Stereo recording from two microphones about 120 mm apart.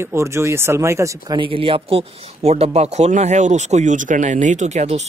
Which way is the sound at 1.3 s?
45° right (ahead or behind).